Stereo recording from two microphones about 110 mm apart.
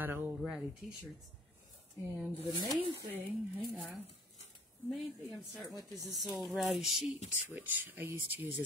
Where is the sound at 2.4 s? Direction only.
35° left (ahead or behind).